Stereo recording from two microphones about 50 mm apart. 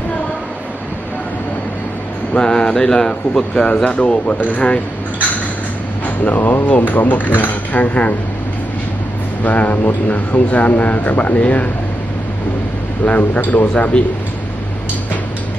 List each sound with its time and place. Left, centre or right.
2.3 s speech: centre
3.6 s speech: left
6.0 s speech: left
9.4 s speech: left
13.0 s speech: left